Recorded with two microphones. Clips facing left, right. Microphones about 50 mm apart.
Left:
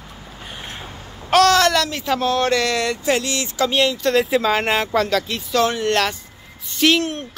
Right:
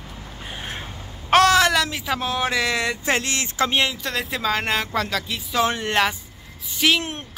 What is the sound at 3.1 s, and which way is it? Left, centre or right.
Speech, right.